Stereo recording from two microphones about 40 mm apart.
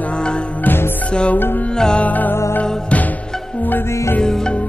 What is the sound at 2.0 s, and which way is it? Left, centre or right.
Music, left.